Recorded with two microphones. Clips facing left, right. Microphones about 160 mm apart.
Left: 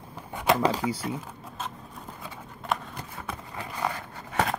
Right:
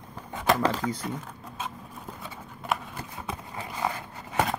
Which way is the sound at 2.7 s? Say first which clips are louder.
Even; 5° right (ahead or behind).